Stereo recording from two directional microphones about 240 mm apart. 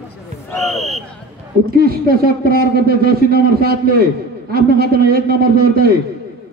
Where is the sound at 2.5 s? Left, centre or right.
Right.